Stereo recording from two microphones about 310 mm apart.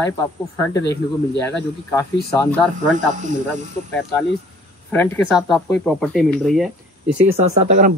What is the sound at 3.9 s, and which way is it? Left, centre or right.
Speech, centre.